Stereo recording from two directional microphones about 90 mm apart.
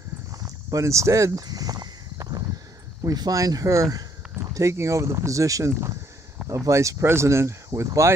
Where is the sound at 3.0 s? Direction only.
45° right (ahead or behind).